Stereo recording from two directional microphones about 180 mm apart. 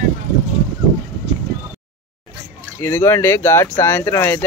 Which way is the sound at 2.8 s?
15° left (ahead or behind).